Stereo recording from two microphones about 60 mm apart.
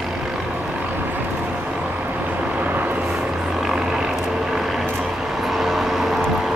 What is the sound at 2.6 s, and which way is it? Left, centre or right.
Vehicle, right.